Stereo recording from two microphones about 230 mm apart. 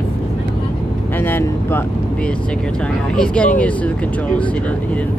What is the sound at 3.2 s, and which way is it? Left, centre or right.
Speech, centre.